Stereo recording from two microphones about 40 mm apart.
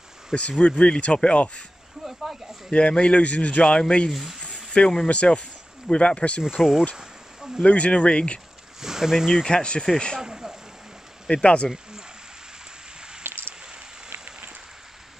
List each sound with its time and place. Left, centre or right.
0.3 s speech: left
2.0 s a sound: centre
2.7 s speech: left
3.6 s speech: left
4.1 s speech: centre
5.0 s speech: left
6.4 s speech: centre
7.0 s a sound: centre
7.6 s speech: left
8.8 s speech: centre
9.5 s speech: left
10.1 s a sound: centre
11.4 s speech: left
13.2 s a sound: right